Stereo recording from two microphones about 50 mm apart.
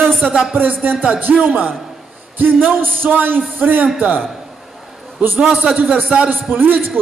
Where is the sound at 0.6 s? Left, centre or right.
Right.